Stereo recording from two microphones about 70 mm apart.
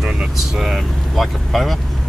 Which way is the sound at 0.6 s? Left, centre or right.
Centre.